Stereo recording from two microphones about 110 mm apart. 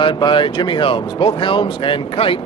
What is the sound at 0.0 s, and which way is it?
A man's voice, 45° left (ahead or behind).